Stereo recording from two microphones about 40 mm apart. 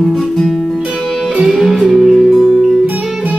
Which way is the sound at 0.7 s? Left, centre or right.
Centre.